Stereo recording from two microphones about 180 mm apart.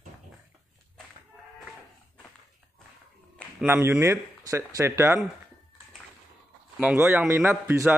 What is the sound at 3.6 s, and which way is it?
A man's voice, 15° right (ahead or behind).